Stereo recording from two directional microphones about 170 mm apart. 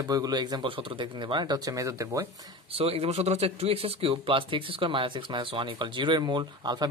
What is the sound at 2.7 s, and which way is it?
Speech, 35° right (ahead or behind).